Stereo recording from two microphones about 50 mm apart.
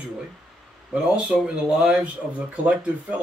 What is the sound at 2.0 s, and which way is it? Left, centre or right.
Speech, right.